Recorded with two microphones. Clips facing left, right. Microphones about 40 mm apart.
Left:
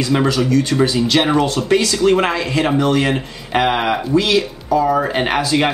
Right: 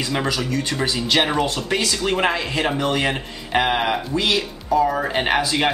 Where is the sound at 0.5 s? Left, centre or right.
Centre.